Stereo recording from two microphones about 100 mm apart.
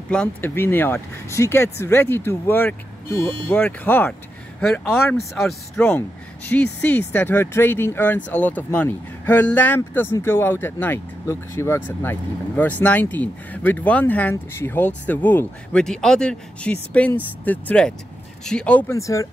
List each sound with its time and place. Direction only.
0.1 s speech: 10° left (ahead or behind)
0.6 s speech: 20° left (ahead or behind)
5.4 s speech: centre (ahead or behind)
5.9 s speech: 15° left (ahead or behind)
15.8 s speech: 5° left (ahead or behind)
18.9 s speech: 30° left (ahead or behind)